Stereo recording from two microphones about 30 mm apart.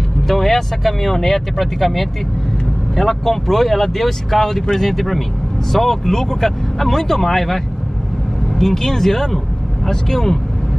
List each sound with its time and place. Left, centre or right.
0.3 s speech: centre
1.8 s speech: centre
3.0 s speech: centre